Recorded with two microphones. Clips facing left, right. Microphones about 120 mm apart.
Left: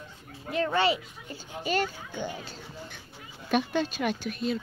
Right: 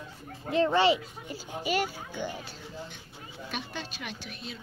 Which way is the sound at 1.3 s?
10° right (ahead or behind).